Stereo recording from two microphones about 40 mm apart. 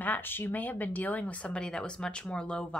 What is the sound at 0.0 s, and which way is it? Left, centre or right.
Speech, left.